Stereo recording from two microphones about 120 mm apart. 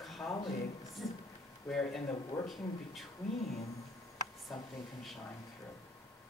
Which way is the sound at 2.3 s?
25° left (ahead or behind).